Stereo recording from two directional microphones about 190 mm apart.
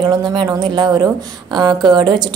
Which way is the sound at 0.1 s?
25° right (ahead or behind).